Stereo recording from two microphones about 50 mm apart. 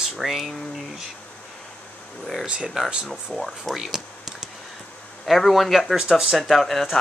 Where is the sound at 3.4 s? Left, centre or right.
Centre.